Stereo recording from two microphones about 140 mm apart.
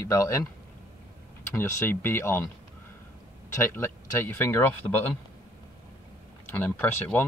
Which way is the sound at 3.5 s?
20° left (ahead or behind).